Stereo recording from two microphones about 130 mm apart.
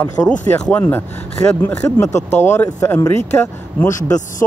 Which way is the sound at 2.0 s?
65° left (ahead or behind).